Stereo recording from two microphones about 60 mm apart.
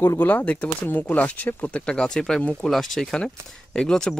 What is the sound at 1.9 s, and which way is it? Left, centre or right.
Speech, centre.